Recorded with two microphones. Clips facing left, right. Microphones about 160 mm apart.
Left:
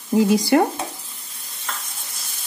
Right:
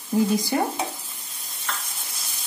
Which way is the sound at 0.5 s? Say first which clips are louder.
Left 10 dB; 70° left (ahead or behind).